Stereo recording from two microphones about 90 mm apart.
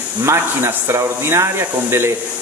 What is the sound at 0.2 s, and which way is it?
Speech, 30° right (ahead or behind).